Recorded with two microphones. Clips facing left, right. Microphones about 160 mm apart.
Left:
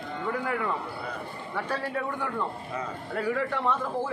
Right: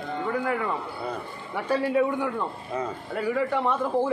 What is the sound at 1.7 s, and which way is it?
A man's voice, 10° right (ahead or behind).